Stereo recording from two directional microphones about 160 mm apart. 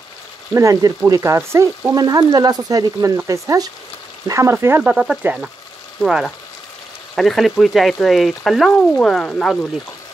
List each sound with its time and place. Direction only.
0.6 s frying: 20° right (ahead or behind)
4.3 s speech: 15° right (ahead or behind); by 9.7 s 5° left (ahead or behind)